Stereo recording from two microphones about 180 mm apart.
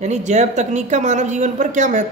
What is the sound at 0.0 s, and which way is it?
Speech, 40° right (ahead or behind).